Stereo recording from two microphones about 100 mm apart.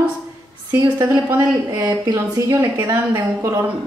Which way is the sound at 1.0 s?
30° right (ahead or behind).